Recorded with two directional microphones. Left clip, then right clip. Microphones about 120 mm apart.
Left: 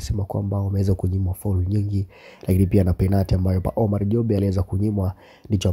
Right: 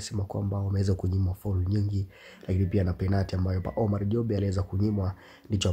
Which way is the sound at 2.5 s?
55° left (ahead or behind).